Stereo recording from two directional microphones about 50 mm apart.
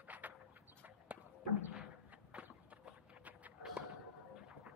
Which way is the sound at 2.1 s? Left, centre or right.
Right.